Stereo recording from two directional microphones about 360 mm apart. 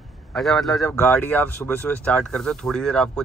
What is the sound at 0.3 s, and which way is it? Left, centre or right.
Speech, centre.